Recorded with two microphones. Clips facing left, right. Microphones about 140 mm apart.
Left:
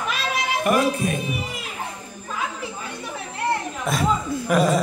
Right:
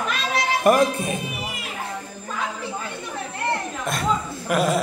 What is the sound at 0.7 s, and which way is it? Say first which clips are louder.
Music: right 3 dB; 40° right (ahead or behind).